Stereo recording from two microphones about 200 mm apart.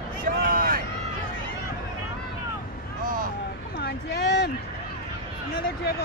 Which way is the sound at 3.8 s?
55° left (ahead or behind).